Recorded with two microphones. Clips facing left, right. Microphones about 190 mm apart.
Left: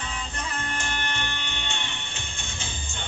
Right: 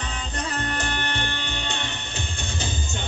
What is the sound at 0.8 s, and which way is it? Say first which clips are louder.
Music: right 3 dB; 35° right (ahead or behind).